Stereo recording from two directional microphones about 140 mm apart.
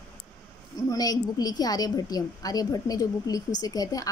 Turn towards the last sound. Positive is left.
turn(degrees=25)  # may be behind; listen again after turning